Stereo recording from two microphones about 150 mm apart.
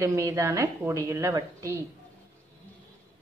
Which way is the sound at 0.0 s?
20° right (ahead or behind).